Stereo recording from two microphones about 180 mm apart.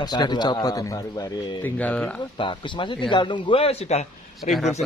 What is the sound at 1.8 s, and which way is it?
Speech, 10° left (ahead or behind).